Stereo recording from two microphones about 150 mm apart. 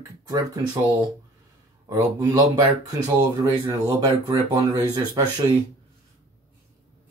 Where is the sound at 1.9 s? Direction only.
25° right (ahead or behind).